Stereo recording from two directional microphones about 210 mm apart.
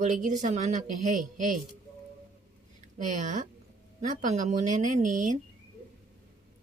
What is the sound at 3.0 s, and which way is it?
Speech, 35° right (ahead or behind).